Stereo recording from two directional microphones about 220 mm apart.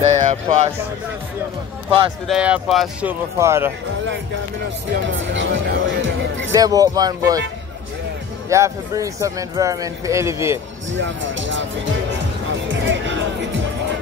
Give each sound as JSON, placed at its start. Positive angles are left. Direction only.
{"t": 0.0, "sound": "speech", "side_deg": -35}
{"t": 2.2, "sound": "speech", "side_deg": -5}
{"t": 5.0, "sound": "music", "side_deg": -55}
{"t": 6.5, "sound": "speech", "side_deg": -15}
{"t": 8.5, "sound": "speech", "side_deg": -15}
{"t": 10.9, "sound": "speech", "side_deg": -60}
{"t": 12.6, "sound": "music", "side_deg": -60}